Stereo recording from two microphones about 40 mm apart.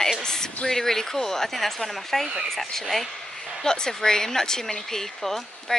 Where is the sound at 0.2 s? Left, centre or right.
Centre.